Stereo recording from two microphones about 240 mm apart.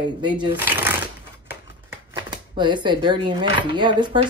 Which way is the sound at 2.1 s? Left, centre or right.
Centre.